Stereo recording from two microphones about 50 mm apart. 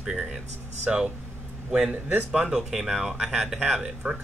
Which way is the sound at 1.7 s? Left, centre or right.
Right.